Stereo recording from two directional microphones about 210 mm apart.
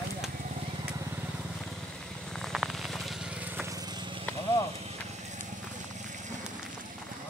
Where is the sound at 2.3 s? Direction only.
Centre (ahead or behind); by 4.2 s 20° right (ahead or behind).